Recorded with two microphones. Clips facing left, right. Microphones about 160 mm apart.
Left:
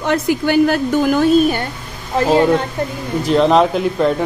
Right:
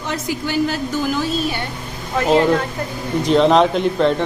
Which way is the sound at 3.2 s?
Centre (ahead or behind).